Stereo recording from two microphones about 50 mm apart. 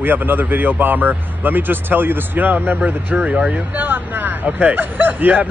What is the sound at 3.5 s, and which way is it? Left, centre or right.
Speech, right.